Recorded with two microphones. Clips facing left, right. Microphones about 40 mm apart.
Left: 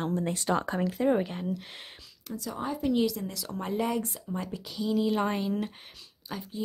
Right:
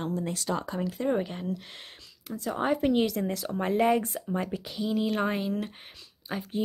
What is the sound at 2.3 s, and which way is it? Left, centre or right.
Speech, right.